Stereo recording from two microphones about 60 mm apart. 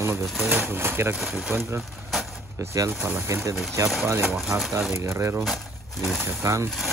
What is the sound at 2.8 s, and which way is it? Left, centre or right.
Speech, right.